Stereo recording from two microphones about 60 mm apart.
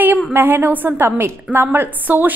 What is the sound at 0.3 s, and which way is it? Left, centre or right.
A woman's voice, right.